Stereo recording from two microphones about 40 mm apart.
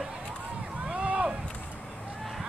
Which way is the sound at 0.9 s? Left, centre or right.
Right.